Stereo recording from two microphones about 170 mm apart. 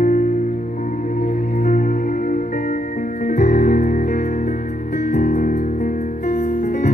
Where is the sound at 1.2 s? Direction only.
55° left (ahead or behind).